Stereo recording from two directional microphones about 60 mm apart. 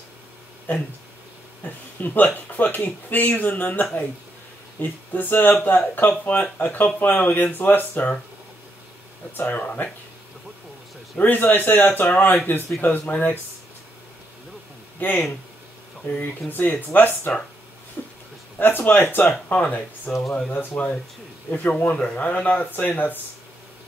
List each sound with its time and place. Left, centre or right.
1.6 s a man's voice: left
9.4 s speech: left
11.1 s a man's voice: left
15.0 s a man's voice: left
18.0 s a sound: left
18.6 s a man's voice: left